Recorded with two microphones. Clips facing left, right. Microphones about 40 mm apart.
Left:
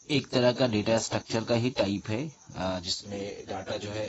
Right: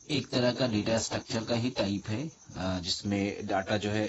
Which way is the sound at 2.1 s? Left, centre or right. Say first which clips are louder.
Left 3 dB; left.